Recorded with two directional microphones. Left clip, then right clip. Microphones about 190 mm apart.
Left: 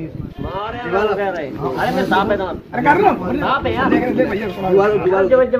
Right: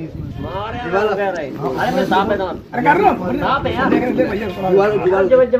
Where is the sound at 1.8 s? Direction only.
Centre (ahead or behind).